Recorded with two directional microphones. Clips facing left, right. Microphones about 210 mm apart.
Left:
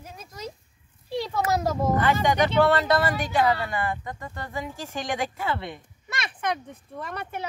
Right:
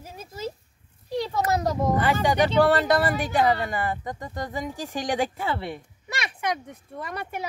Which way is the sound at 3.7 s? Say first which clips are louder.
Right 1 dB; 40° right (ahead or behind).